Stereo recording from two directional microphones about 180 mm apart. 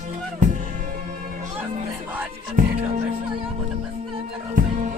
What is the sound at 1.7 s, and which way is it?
Music, 35° right (ahead or behind).